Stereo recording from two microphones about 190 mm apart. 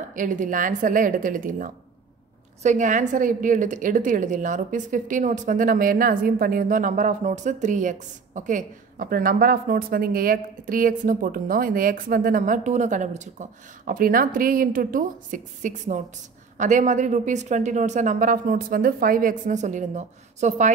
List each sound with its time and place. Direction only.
0.1 s a woman's voice: 45° right (ahead or behind)